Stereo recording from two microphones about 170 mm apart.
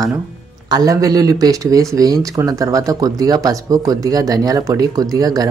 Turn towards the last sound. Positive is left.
turn(degrees=-20)  # may be behind; listen again after turning